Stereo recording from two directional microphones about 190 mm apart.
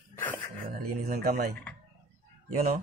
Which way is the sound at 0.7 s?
55° right (ahead or behind).